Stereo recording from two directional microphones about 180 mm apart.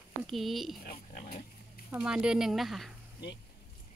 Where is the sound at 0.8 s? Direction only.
55° left (ahead or behind).